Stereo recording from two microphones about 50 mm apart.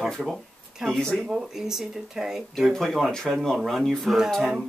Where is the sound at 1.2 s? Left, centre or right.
Centre.